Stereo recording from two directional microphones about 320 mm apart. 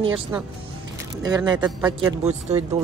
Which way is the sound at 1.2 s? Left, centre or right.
Centre.